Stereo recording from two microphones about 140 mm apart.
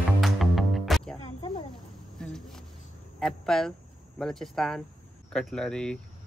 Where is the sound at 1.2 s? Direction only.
50° left (ahead or behind).